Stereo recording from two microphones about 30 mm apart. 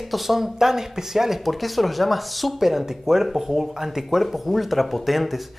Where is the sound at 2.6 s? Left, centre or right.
Centre.